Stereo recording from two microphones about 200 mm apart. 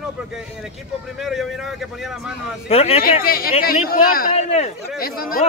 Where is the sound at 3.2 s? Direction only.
50° left (ahead or behind).